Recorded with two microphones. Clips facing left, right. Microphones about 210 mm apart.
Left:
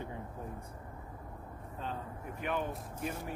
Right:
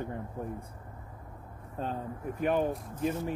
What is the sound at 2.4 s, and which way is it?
Speech, 40° right (ahead or behind).